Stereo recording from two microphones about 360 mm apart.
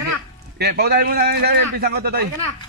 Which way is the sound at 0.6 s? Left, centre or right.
Right.